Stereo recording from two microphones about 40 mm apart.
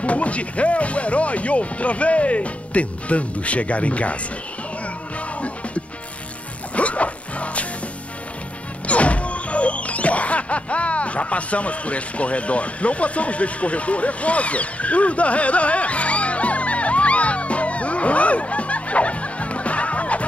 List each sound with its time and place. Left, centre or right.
0.0 s speech: left
6.7 s music: left
8.8 s music: left